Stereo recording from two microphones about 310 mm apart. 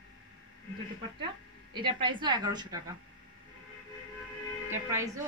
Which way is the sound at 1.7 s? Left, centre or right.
Centre.